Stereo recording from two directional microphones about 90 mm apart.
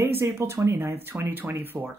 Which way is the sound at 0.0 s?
25° right (ahead or behind).